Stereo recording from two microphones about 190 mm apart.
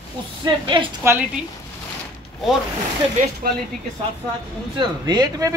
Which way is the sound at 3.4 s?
50° right (ahead or behind).